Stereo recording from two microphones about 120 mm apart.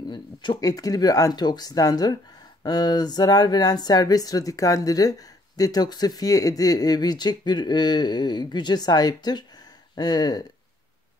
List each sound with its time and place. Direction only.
0.1 s speech: 40° left (ahead or behind)